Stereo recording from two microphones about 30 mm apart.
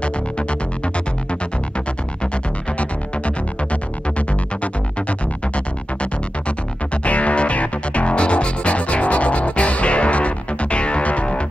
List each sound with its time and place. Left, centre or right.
0.0 s music: left
7.1 s music: left